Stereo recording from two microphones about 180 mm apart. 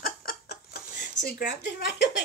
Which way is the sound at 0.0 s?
50° left (ahead or behind).